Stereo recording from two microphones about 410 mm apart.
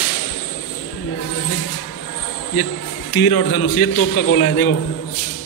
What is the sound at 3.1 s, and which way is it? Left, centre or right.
A man's voice, left.